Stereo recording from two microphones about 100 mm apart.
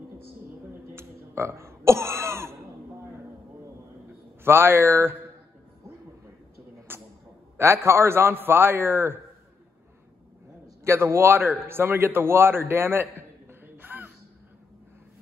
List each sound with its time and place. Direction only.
0.9 s throat clearing: 25° right (ahead or behind)
4.5 s a man's voice: 25° right (ahead or behind)
6.9 s a sound: 20° right (ahead or behind)
7.5 s a man's voice: 25° right (ahead or behind)
10.8 s a man's voice: 25° right (ahead or behind)